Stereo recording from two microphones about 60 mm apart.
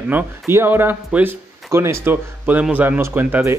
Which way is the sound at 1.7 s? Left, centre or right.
Right.